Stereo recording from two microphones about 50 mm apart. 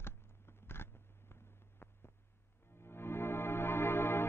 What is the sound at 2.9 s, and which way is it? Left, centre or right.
Music, left.